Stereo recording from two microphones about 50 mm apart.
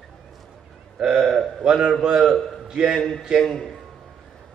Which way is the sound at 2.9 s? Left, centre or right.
Centre.